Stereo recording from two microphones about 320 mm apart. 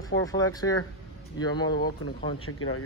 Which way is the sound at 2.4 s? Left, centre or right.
Left.